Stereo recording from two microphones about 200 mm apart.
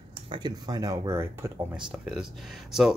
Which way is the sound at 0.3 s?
20° right (ahead or behind).